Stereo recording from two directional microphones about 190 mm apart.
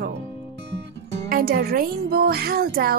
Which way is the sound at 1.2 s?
55° right (ahead or behind).